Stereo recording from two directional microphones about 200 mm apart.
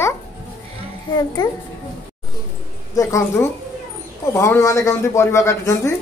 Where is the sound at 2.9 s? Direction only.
15° left (ahead or behind).